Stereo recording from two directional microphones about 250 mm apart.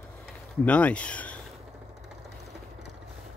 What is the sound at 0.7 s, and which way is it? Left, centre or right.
Speech, centre.